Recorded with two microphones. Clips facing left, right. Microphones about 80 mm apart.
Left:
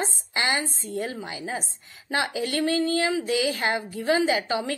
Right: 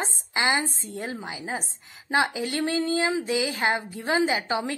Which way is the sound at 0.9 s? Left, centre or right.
Right.